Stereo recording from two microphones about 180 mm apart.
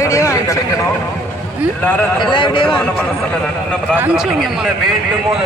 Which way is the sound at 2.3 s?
30° left (ahead or behind).